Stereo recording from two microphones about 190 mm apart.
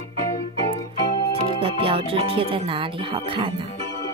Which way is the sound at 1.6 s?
30° right (ahead or behind).